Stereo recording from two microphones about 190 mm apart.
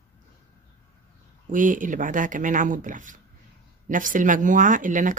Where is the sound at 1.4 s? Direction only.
45° right (ahead or behind).